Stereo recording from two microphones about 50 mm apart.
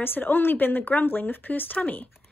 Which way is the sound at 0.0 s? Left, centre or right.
Left.